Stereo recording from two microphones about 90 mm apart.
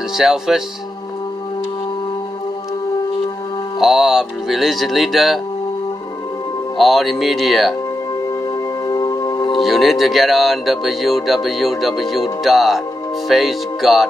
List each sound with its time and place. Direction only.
0.1 s speech: 5° right (ahead or behind)
3.8 s speech: 5° right (ahead or behind)
6.8 s speech: centre (ahead or behind)
8.3 s music: 45° left (ahead or behind)
9.6 s speech: centre (ahead or behind)